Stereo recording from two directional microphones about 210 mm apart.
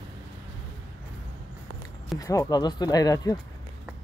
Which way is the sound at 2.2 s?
15° left (ahead or behind).